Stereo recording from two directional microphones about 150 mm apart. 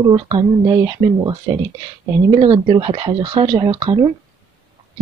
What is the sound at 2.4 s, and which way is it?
Speech, 35° right (ahead or behind).